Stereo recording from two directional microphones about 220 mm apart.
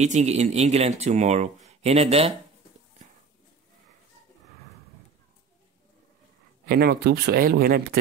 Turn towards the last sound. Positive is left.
turn(degrees=-45)  # may be behind; listen again after turning